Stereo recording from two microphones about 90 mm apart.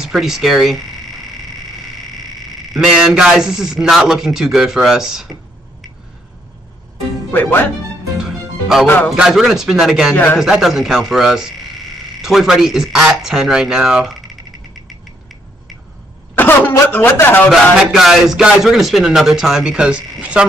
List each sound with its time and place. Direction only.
0.0 s speech: 5° right (ahead or behind)
7.2 s speech: 25° left (ahead or behind)
8.2 s music: 5° right (ahead or behind)
8.8 s a man's voice: 20° left (ahead or behind)
9.1 s speech: 5° right (ahead or behind)
16.3 s throat clearing: 20° left (ahead or behind)
16.9 s a man's voice: 25° left (ahead or behind)
17.9 s speech: 5° right (ahead or behind)